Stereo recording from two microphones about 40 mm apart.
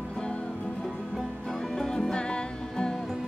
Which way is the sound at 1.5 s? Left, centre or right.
Centre.